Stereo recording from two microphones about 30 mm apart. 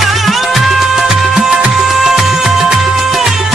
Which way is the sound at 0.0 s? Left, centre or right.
Centre.